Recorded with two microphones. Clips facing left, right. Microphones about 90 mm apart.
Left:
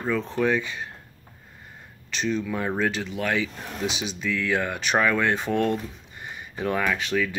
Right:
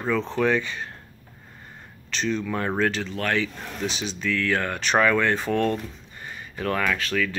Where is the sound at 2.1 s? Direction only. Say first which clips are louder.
Even; 10° left (ahead or behind).